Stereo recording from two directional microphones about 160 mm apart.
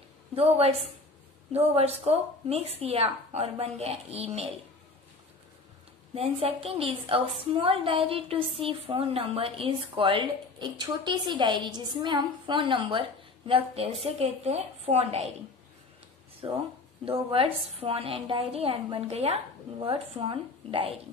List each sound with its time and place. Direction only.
0.4 s a woman's voice: 40° right (ahead or behind)
6.1 s a woman's voice: 40° right (ahead or behind)
16.4 s a woman's voice: 30° right (ahead or behind)